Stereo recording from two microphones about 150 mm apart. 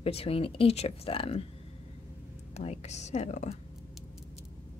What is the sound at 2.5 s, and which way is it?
Speech, 45° left (ahead or behind).